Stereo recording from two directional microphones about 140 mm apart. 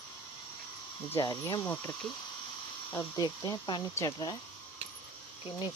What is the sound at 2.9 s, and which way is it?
Speech, 30° left (ahead or behind).